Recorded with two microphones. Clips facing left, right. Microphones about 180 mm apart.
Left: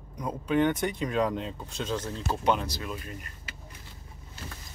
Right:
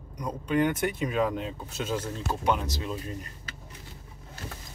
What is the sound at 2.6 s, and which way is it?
Speech, 20° right (ahead or behind).